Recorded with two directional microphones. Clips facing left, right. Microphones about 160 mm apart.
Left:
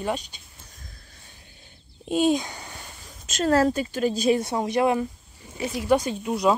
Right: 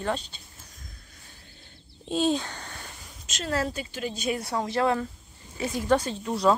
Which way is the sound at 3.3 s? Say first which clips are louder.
Left 9 dB; 45° left (ahead or behind).